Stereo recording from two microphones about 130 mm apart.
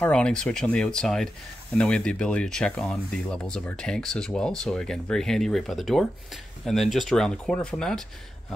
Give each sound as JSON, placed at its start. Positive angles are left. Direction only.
{"t": 0.0, "sound": "speech", "side_deg": 5}